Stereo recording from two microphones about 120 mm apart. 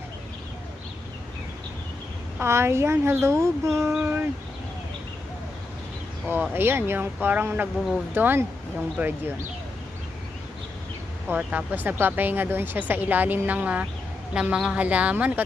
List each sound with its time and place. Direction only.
2.4 s a woman's voice: 20° right (ahead or behind)
6.2 s speech: 15° right (ahead or behind)
11.2 s speech: 15° right (ahead or behind)